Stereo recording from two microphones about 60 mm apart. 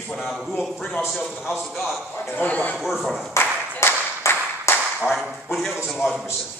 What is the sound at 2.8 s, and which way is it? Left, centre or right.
Speech, centre.